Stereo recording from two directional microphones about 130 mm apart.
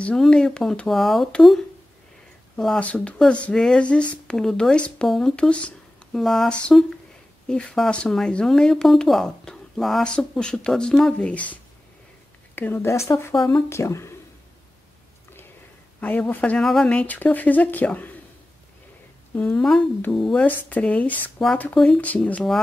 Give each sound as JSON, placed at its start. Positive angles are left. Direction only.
{"t": 0.0, "sound": "speech", "side_deg": 5}
{"t": 13.3, "sound": "speech", "side_deg": 5}
{"t": 13.7, "sound": "speech", "side_deg": 20}
{"t": 16.0, "sound": "speech", "side_deg": 15}
{"t": 19.3, "sound": "speech", "side_deg": 10}